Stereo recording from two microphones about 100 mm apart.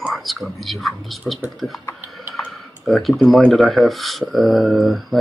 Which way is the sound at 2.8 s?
Centre (ahead or behind).